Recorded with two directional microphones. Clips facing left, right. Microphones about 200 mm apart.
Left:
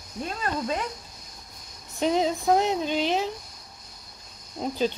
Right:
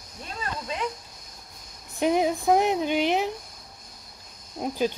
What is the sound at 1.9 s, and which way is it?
Speech, 15° right (ahead or behind).